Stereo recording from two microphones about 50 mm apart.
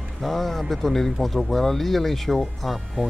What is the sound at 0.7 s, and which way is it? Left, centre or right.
Speech, centre.